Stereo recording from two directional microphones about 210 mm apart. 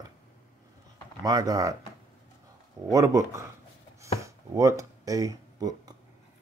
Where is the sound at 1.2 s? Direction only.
20° right (ahead or behind).